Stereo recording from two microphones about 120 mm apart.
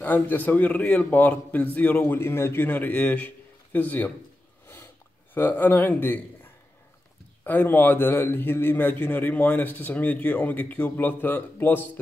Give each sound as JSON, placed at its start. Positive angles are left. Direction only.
{"t": 0.0, "sound": "a man's voice", "side_deg": 15}
{"t": 5.3, "sound": "a man's voice", "side_deg": 15}